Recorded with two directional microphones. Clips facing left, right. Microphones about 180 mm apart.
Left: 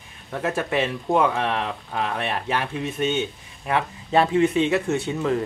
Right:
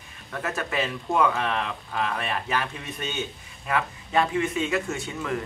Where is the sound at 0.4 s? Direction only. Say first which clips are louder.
Left 5 dB; 25° left (ahead or behind).